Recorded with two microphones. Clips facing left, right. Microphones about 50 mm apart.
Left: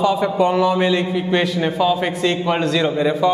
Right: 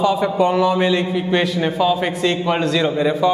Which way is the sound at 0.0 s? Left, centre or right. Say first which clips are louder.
Even; right.